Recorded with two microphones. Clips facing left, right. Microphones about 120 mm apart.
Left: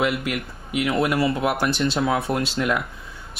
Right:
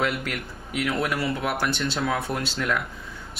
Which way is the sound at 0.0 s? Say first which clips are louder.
Left 4 dB; 5° left (ahead or behind).